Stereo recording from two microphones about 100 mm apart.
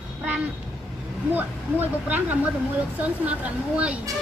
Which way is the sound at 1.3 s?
15° right (ahead or behind).